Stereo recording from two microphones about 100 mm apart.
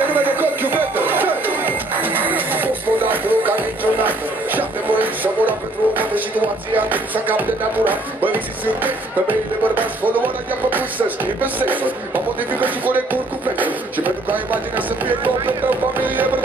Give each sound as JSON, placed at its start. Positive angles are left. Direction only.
{"t": 0.0, "sound": "music", "side_deg": -20}